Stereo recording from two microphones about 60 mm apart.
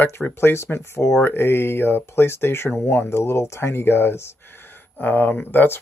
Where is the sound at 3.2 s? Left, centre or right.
Left.